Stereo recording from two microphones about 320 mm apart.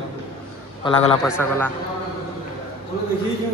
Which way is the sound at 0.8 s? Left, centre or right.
Centre.